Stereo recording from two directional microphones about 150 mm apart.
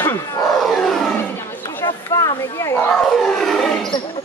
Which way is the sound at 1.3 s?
15° left (ahead or behind).